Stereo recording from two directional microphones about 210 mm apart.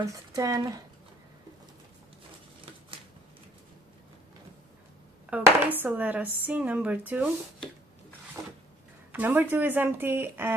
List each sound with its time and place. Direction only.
0.0 s speech: 15° right (ahead or behind)
5.3 s speech: 10° right (ahead or behind)
9.1 s speech: 10° right (ahead or behind)